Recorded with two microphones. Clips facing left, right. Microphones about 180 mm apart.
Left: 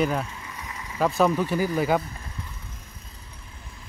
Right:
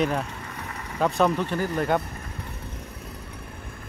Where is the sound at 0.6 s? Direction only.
60° right (ahead or behind).